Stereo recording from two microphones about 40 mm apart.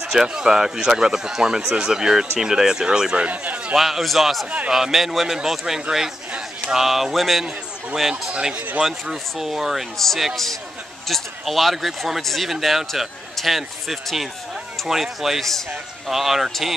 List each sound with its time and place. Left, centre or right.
0.0 s speech: centre
3.2 s speech: right
3.7 s speech: centre
4.6 s speech: centre
7.4 s a man's voice: centre
8.8 s speech: centre
9.9 s speech: centre